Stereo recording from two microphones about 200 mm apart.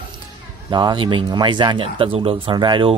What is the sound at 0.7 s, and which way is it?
Speech, 20° right (ahead or behind).